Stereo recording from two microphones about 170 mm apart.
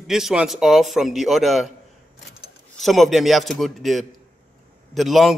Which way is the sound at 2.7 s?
Centre (ahead or behind).